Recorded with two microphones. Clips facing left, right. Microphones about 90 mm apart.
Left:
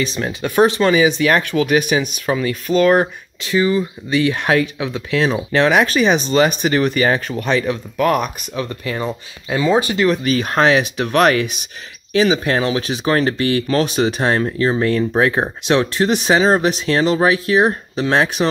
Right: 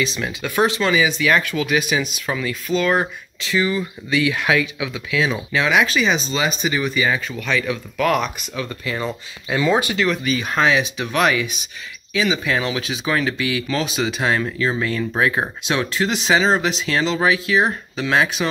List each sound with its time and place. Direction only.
0.0 s speech: 40° left (ahead or behind)
7.4 s speech: 35° left (ahead or behind)
9.8 s speech: 35° left (ahead or behind)